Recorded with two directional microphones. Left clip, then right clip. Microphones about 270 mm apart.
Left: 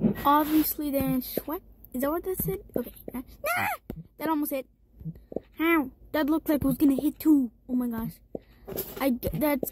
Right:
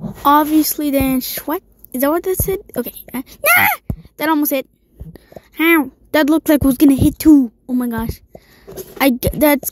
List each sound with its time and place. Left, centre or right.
0.2 s a woman's voice: right